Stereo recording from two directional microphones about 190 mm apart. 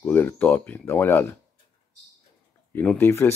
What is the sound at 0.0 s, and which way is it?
Speech, 10° left (ahead or behind).